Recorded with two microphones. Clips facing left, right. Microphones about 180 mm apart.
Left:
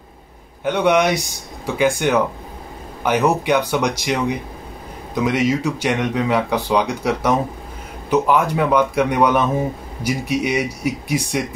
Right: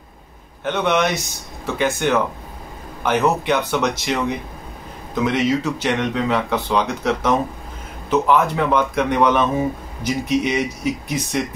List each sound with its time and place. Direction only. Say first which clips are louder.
0.7 s speech: left 3 dB; 10° left (ahead or behind)
5.2 s speech: left 1 dB; 10° left (ahead or behind)